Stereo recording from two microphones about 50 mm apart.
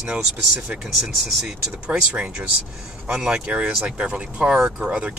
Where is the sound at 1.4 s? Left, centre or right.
Right.